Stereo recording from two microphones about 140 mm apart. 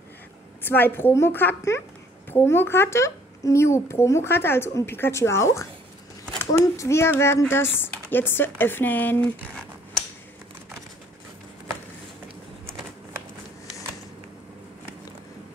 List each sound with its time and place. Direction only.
0.6 s speech: 15° left (ahead or behind)